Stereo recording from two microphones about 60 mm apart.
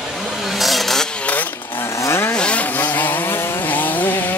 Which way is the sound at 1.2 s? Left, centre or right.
Left.